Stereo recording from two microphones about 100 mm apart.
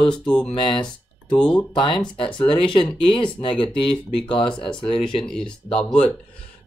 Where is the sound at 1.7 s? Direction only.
55° left (ahead or behind).